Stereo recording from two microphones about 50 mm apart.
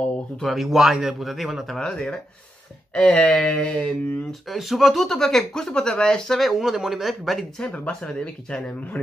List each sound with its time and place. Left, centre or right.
0.5 s a man's voice: centre
1.8 s speech: centre
4.5 s speech: centre
6.5 s a man's voice: centre
8.1 s speech: centre